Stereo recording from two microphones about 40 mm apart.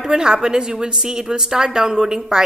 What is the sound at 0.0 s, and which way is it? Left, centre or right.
A woman's voice, centre.